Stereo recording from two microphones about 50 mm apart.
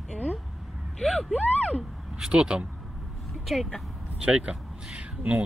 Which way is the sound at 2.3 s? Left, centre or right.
Centre.